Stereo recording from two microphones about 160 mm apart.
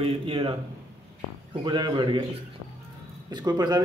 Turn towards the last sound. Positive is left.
turn(degrees=-25)  # may be behind; listen again after turning